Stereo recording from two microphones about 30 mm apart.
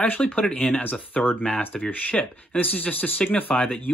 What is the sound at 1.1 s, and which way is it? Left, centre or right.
Speech, left.